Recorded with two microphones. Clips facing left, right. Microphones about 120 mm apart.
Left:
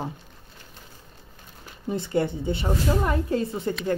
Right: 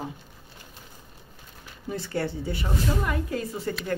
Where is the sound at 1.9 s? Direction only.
20° left (ahead or behind).